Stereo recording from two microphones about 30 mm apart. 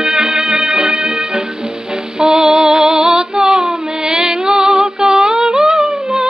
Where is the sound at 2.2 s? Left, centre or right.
Centre.